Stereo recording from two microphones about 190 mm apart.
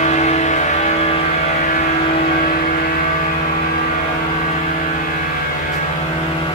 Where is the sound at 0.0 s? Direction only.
35° left (ahead or behind).